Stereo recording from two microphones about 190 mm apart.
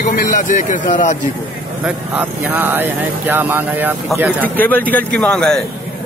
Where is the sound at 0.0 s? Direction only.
45° left (ahead or behind).